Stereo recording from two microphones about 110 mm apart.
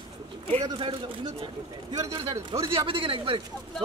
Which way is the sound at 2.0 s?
30° right (ahead or behind).